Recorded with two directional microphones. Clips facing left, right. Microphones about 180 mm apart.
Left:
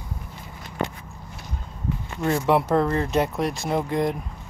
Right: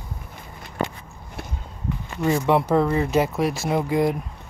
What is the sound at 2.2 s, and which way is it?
Speech, centre (ahead or behind).